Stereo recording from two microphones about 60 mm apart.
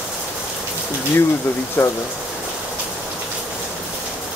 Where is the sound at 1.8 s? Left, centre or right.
Left.